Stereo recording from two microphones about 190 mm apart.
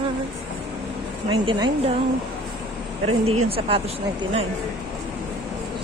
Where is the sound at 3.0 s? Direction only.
30° right (ahead or behind).